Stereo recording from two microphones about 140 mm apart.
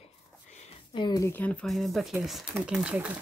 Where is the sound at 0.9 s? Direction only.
30° left (ahead or behind).